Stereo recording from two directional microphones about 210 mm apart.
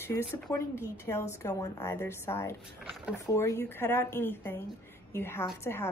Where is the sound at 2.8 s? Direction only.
Centre (ahead or behind).